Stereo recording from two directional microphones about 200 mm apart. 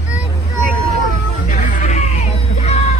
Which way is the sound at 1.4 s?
40° left (ahead or behind).